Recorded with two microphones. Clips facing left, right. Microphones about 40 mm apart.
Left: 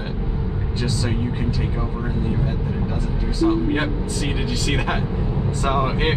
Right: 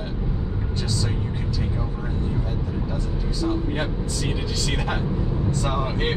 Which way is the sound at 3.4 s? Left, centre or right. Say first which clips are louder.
Left 6 dB; left.